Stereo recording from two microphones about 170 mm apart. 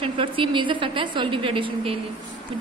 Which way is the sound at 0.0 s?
30° right (ahead or behind).